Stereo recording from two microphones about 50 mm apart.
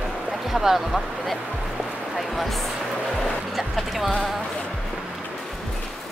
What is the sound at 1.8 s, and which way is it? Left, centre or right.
Music, centre.